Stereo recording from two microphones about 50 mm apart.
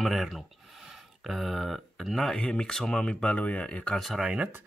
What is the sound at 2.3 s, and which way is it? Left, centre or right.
Speech, centre.